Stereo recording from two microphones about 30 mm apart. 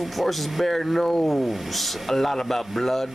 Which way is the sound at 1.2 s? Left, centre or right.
Centre.